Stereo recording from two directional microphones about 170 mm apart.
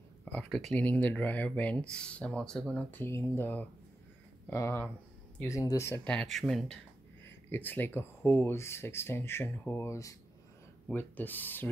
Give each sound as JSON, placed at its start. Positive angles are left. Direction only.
{"t": 0.2, "sound": "speech", "side_deg": 5}
{"t": 6.0, "sound": "speech", "side_deg": 5}
{"t": 7.2, "sound": "speech", "side_deg": 10}